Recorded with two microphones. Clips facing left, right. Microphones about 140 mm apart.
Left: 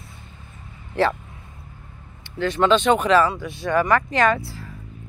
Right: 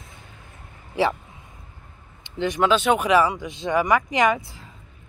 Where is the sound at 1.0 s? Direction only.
10° right (ahead or behind).